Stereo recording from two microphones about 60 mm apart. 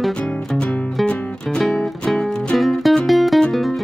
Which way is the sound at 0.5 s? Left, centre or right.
Centre.